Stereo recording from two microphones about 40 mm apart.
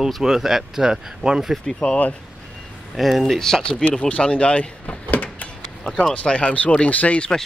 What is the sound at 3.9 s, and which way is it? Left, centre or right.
Speech, left.